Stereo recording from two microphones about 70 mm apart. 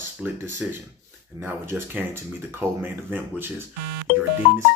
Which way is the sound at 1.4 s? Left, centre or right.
Right.